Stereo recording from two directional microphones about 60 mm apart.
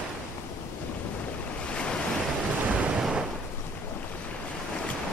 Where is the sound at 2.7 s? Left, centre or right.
Centre.